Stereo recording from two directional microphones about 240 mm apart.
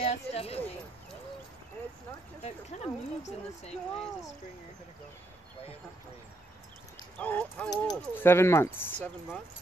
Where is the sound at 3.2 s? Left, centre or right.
Left.